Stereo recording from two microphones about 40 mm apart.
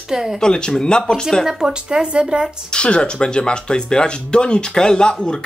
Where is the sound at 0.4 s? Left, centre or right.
Centre.